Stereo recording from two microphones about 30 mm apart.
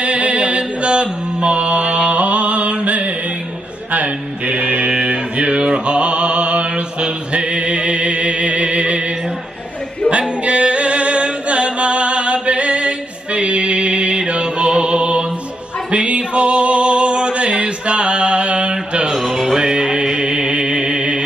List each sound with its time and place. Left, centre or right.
0.0 s mantra: right
3.9 s a sound: right
10.1 s music: right
19.1 s music: centre
19.6 s music: right